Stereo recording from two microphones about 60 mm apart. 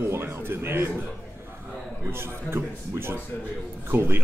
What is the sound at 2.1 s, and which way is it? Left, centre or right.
A man's voice, right.